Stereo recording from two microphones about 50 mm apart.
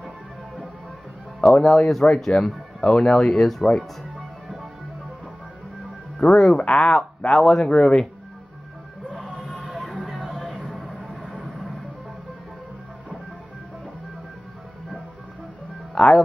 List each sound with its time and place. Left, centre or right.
1.6 s speech: centre
6.2 s speech: centre
7.6 s speech: centre
9.4 s music: centre
10.0 s a sound: centre
11.5 s music: centre
15.9 s music: centre